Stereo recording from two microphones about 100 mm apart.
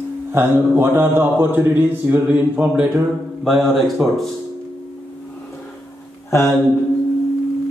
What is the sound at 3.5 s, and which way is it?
Speech, centre (ahead or behind).